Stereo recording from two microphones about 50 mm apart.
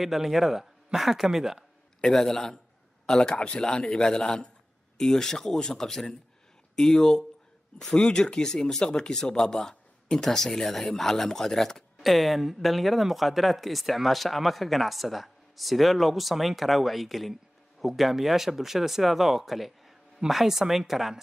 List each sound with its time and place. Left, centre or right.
0.0 s speech: centre
2.0 s speech: centre